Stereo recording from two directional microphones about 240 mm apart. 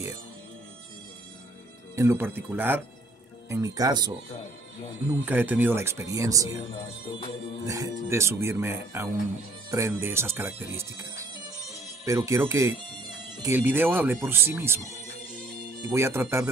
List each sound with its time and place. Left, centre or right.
2.0 s speech: centre
5.2 s speech: centre
7.6 s speech: centre